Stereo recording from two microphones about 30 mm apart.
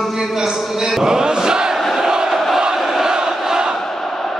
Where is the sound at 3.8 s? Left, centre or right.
Centre.